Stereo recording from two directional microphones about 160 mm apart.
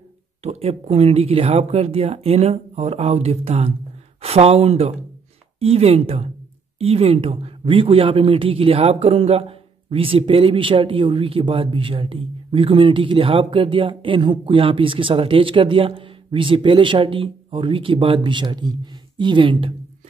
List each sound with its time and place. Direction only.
0.4 s speech: 40° right (ahead or behind)